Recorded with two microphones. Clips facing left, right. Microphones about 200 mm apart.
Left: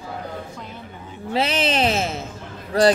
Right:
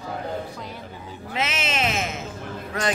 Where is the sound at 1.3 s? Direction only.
35° left (ahead or behind).